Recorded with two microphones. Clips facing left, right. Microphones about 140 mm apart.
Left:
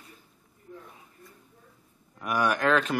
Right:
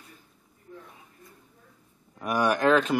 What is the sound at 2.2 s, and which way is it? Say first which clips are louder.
Speech: right 2 dB; 30° right (ahead or behind).